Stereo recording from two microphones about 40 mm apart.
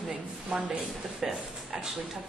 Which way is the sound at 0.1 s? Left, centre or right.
Right.